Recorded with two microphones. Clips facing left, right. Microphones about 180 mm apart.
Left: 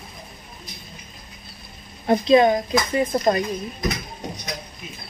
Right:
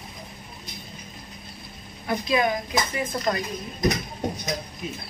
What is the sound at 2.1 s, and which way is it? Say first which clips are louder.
Speech: left 8 dB; 30° left (ahead or behind).